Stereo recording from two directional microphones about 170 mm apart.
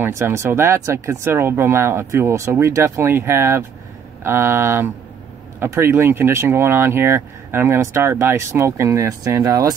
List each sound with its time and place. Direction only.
0.0 s speech: 15° right (ahead or behind)